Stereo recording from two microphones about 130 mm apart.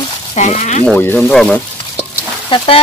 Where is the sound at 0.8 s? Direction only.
15° left (ahead or behind).